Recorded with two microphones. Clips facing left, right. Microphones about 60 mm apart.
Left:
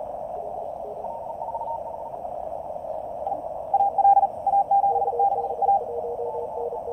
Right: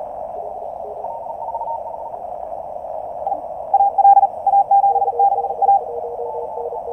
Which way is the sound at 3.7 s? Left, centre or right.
Right.